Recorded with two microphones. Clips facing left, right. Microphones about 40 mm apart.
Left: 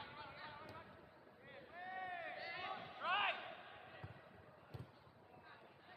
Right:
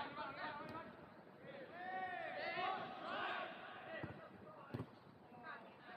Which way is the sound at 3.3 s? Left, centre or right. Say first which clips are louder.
Right 4 dB; centre.